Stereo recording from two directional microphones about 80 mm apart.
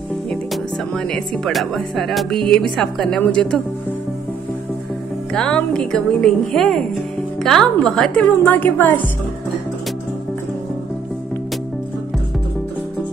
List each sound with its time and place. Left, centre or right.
0.5 s a woman's voice: centre
5.3 s a woman's voice: centre
8.5 s speech: left